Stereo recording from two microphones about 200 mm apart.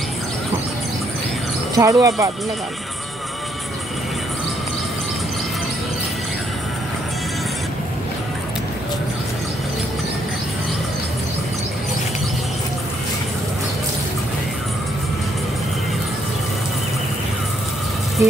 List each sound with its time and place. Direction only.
1.8 s speech: 15° right (ahead or behind)